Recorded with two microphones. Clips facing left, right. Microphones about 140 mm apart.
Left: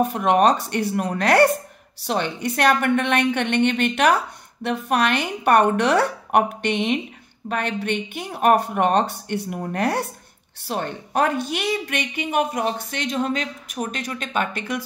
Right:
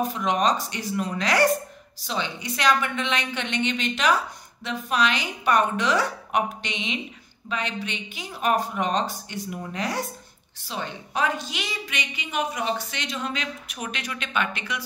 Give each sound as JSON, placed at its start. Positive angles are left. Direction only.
{"t": 0.0, "sound": "a woman's voice", "side_deg": 60}